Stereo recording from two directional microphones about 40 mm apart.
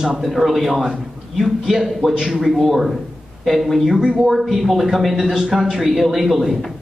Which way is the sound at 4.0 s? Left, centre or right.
Centre.